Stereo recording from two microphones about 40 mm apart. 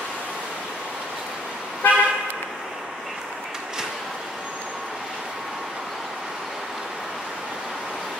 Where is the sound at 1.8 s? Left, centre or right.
Left.